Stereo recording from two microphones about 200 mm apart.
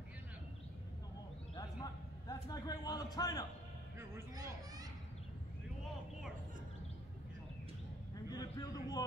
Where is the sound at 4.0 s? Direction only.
15° right (ahead or behind).